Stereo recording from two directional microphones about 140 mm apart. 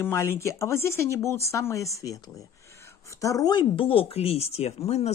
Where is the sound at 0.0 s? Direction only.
15° left (ahead or behind).